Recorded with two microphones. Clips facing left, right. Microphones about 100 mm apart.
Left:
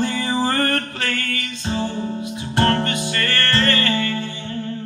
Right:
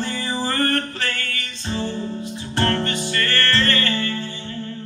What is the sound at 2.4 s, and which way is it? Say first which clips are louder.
Music: left 3 dB; 20° left (ahead or behind).